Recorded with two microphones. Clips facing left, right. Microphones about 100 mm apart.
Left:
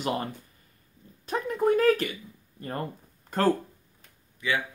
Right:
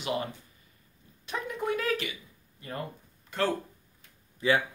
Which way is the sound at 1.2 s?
40° left (ahead or behind).